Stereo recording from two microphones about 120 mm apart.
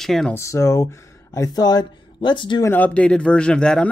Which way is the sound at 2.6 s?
15° left (ahead or behind).